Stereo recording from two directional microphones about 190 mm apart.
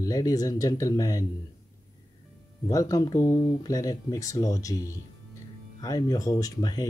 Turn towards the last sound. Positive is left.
turn(degrees=20)  # may be behind; listen again after turning